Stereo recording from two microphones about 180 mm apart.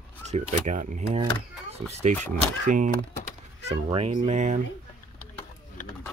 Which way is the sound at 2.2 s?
45° right (ahead or behind).